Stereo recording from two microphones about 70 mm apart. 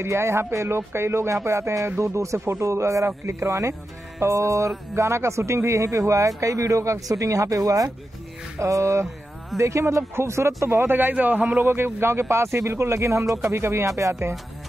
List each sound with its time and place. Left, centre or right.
0.0 s speech: right
11.6 s speech: right